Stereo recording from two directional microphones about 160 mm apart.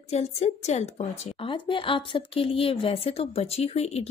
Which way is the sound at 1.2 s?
35° left (ahead or behind).